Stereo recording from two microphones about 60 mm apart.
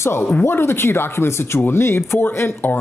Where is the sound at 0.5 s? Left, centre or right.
Left.